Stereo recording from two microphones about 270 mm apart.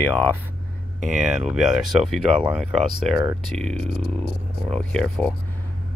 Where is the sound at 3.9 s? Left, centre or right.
Left.